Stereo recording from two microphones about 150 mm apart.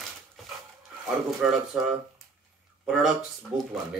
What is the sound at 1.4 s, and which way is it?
Speech, centre (ahead or behind).